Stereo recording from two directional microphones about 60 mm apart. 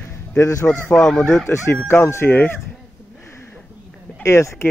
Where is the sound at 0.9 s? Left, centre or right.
Centre.